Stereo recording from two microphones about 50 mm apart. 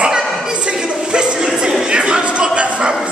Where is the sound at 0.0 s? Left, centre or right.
Centre.